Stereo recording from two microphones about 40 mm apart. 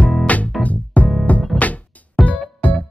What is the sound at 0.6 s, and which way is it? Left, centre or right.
Music, left.